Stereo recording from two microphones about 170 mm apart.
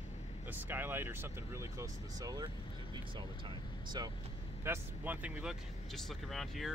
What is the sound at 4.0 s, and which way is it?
Speech, 25° right (ahead or behind).